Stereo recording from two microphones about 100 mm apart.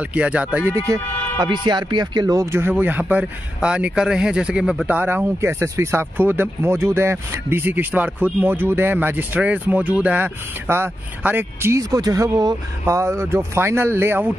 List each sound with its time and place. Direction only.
0.0 s speech: 10° right (ahead or behind)
1.4 s speech: 50° right (ahead or behind); by 2.7 s 25° right (ahead or behind)
2.7 s speech: 15° right (ahead or behind); by 12.5 s 40° right (ahead or behind)
12.8 s speech: 30° right (ahead or behind)